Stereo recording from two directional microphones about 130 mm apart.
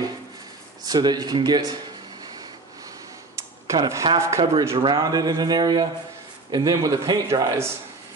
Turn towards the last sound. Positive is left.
turn(degrees=-25)  # may be behind; listen again after turning